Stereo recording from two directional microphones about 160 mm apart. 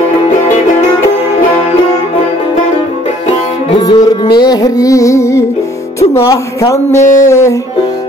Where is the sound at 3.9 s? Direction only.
30° left (ahead or behind).